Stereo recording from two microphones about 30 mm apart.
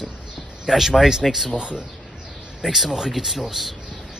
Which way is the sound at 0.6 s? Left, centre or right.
Centre.